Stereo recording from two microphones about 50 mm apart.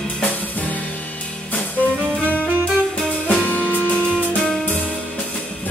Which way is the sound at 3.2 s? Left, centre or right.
Left.